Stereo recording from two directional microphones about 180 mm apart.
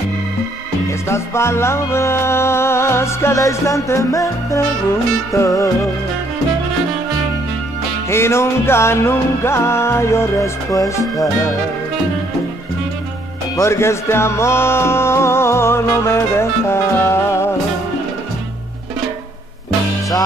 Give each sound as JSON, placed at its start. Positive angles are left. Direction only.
{"t": 0.8, "sound": "music", "side_deg": 15}
{"t": 8.1, "sound": "music", "side_deg": 15}
{"t": 13.6, "sound": "music", "side_deg": 15}